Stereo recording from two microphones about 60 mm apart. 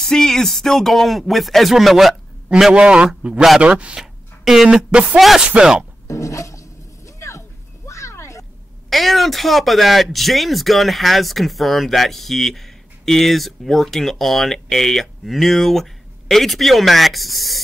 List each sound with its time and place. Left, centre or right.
0.0 s speech: centre
2.7 s speech: centre
6.0 s a sound: left
8.9 s speech: centre